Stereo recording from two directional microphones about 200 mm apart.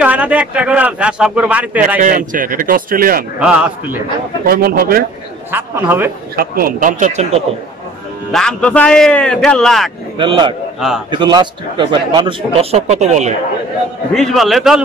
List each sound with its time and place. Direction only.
0.0 s a man's voice: 5° right (ahead or behind)
2.0 s speech: 40° right (ahead or behind)
3.3 s a man's voice: 5° right (ahead or behind)
4.5 s speech: 50° right (ahead or behind)
5.5 s a man's voice: 10° right (ahead or behind)
6.3 s a man's voice: 45° right (ahead or behind)
8.3 s a man's voice: 5° left (ahead or behind)
10.1 s a man's voice: 25° right (ahead or behind)
14.1 s a man's voice: centre (ahead or behind)